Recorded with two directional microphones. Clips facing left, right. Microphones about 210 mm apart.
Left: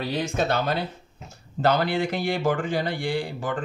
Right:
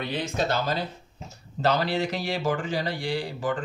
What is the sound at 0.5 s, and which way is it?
A man's voice, 60° left (ahead or behind).